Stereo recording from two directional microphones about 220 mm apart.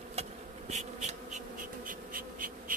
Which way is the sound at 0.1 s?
30° right (ahead or behind).